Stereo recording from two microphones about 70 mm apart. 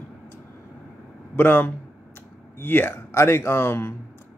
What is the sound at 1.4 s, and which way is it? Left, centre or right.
Speech, left.